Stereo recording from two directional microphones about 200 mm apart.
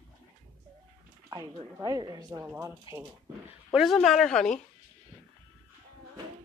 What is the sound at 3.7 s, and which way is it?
Speech, centre (ahead or behind).